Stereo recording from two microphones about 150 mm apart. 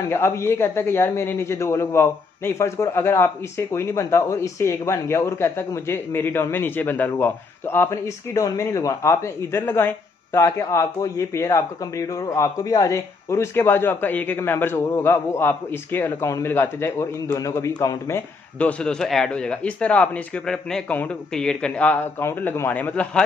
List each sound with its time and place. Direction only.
0.1 s a man's voice: 15° left (ahead or behind)